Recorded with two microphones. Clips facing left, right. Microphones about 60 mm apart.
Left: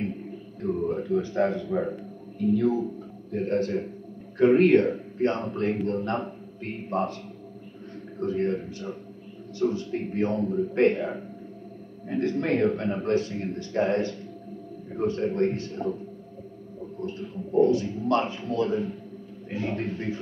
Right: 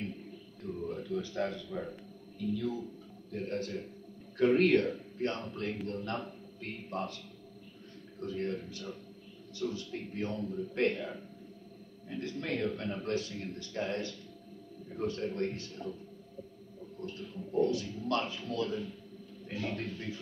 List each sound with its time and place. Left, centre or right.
0.0 s a sound: left
4.4 s a man's voice: left
8.2 s a man's voice: left
12.1 s a man's voice: left
17.0 s a man's voice: left